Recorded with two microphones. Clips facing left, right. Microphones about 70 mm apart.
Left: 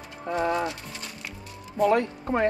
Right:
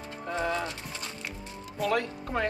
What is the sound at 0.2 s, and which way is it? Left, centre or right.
Music, left.